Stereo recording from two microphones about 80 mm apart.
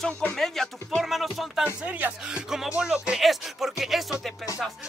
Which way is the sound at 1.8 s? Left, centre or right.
Centre.